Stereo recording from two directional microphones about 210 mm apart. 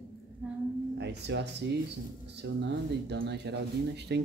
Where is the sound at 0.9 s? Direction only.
55° right (ahead or behind).